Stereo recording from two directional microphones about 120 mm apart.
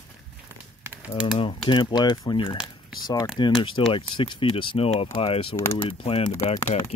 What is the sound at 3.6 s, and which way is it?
Speech, 45° left (ahead or behind).